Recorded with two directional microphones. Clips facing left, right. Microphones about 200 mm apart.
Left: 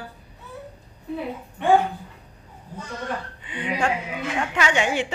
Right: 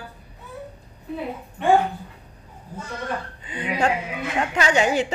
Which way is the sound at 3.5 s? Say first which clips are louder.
Right 2 dB; 40° right (ahead or behind).